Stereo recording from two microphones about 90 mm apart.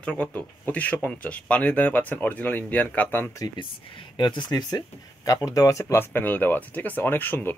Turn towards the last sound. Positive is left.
turn(degrees=25)  # may be behind; listen again after turning